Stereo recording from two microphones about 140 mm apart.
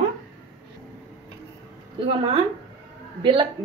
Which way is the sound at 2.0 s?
40° right (ahead or behind).